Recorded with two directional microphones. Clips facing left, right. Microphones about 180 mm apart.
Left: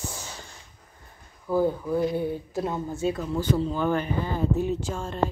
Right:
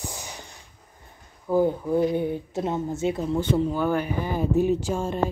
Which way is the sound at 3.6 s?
10° right (ahead or behind).